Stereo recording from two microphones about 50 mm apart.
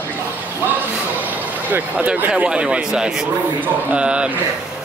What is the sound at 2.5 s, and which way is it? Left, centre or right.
Speech, right.